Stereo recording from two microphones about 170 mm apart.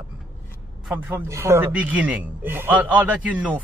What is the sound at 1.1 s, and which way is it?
A man's voice, 15° right (ahead or behind).